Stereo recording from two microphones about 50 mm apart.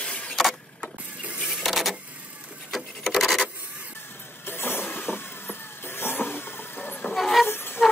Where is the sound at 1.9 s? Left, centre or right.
Right.